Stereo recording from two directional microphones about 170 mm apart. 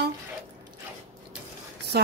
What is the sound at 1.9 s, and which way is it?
Speech, 70° right (ahead or behind).